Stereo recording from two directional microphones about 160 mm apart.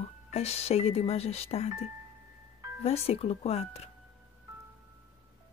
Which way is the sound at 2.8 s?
40° left (ahead or behind).